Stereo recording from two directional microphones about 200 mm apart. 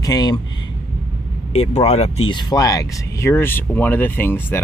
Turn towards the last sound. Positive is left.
turn(degrees=10)  # may be behind; listen again after turning